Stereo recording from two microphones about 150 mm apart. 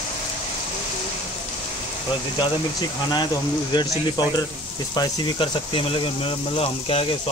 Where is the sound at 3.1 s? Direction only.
30° left (ahead or behind).